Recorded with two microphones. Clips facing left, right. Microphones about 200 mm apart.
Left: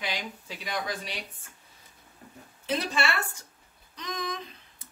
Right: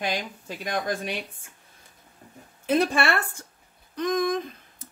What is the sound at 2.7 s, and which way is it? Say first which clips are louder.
Speech: right 7 dB; 50° right (ahead or behind).